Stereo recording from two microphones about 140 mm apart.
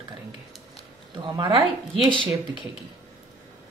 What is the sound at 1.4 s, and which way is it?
Speech, 35° right (ahead or behind).